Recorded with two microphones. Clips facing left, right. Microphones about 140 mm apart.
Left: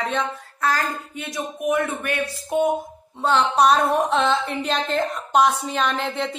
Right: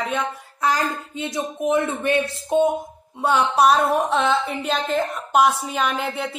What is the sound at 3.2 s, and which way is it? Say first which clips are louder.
A woman's voice: even; 10° right (ahead or behind).